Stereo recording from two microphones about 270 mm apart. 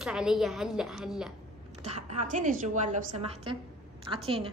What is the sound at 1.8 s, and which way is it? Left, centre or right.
A woman's voice, right.